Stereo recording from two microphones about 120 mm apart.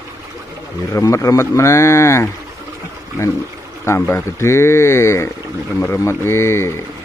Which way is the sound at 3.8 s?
20° left (ahead or behind).